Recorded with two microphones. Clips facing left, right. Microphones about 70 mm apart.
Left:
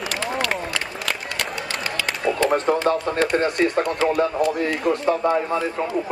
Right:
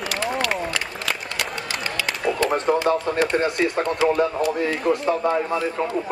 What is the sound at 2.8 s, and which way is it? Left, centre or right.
Speech, centre.